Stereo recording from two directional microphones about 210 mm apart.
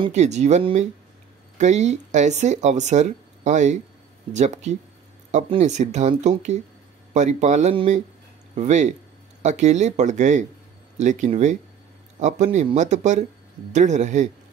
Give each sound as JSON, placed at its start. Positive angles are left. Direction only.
{"t": 0.0, "sound": "speech", "side_deg": -35}